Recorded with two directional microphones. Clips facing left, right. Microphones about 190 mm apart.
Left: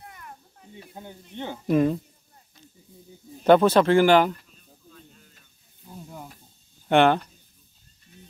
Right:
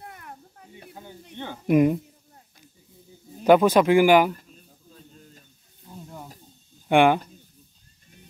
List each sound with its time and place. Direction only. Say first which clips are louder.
0.0 s a sound: right 2 dB; 50° right (ahead or behind)
1.3 s speech: left 2 dB; 15° left (ahead or behind)
1.7 s speech: right 2 dB; 15° right (ahead or behind)
3.4 s speech: even; 10° right (ahead or behind)
4.4 s a sound: right 4 dB; 40° right (ahead or behind)
5.9 s sizzle: even; 5° left (ahead or behind)
6.9 s speech: right 1 dB; 10° right (ahead or behind)